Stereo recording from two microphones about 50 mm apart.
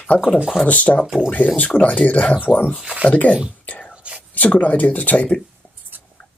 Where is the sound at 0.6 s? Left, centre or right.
Left.